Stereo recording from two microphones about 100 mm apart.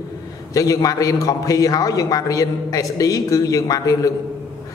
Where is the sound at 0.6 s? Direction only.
35° left (ahead or behind).